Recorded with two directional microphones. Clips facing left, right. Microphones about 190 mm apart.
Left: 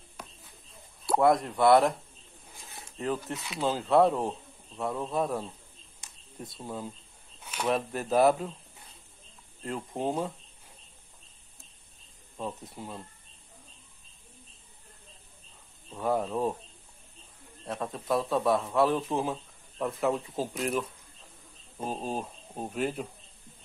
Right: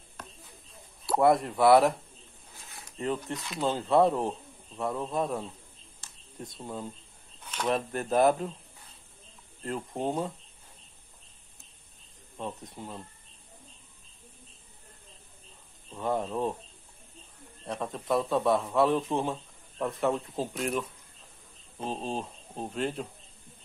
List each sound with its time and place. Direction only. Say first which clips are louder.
1.2 s a man's voice: right 1 dB; centre (ahead or behind)
3.0 s a man's voice: even; centre (ahead or behind)
6.0 s a sound: left 1 dB; 15° left (ahead or behind)
6.4 s a man's voice: even; 5° left (ahead or behind)
9.7 s a man's voice: even; centre (ahead or behind)
12.4 s a man's voice: left 1 dB; 5° left (ahead or behind)
15.9 s a man's voice: left 2 dB; 5° left (ahead or behind)
17.6 s a man's voice: even; centre (ahead or behind)